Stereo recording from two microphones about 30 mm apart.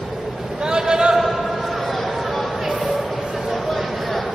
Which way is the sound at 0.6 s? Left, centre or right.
Right.